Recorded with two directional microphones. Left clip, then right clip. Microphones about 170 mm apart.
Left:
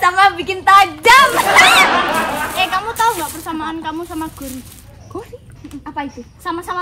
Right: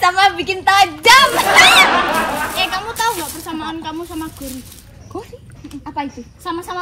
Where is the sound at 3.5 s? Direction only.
20° left (ahead or behind).